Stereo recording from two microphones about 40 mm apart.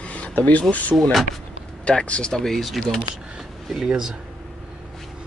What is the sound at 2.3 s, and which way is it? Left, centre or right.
Speech, centre.